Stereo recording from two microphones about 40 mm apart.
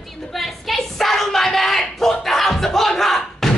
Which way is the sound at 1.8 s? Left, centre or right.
Centre.